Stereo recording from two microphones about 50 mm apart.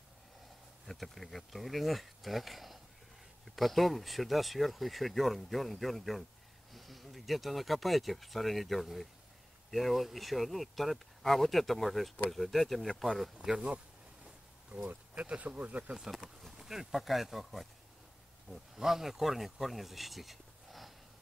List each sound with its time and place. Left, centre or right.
0.8 s speech: centre
13.5 s speech: right
14.9 s speech: right
16.4 s speech: centre